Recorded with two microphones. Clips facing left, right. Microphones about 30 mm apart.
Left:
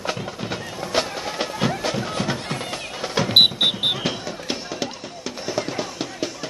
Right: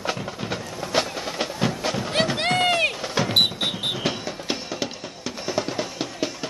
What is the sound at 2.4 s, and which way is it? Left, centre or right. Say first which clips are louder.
Run: right 9 dB; right.